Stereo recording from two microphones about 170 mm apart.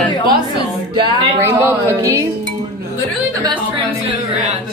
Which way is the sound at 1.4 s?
15° right (ahead or behind).